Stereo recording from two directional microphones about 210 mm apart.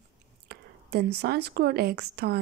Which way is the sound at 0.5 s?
50° right (ahead or behind).